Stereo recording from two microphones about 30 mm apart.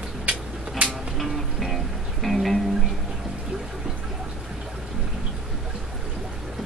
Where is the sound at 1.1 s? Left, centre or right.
Centre.